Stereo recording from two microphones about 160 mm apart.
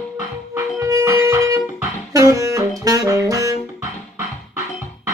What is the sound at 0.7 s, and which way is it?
Music, 20° right (ahead or behind).